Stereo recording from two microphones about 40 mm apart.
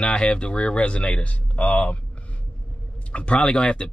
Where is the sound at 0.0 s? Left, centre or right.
Left.